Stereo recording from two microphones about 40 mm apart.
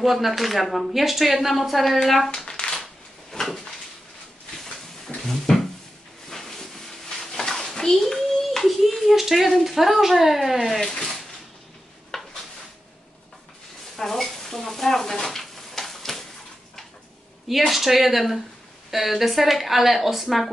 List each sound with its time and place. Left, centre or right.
0.0 s speech: centre
2.3 s a sound: centre
2.8 s drawer open or close: centre
5.5 s a sound: centre
9.5 s speech: centre
10.8 s speech: centre
12.1 s a sound: centre
13.9 s stir: centre
17.5 s speech: centre